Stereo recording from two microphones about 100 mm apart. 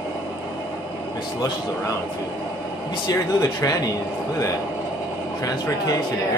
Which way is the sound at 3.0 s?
35° left (ahead or behind).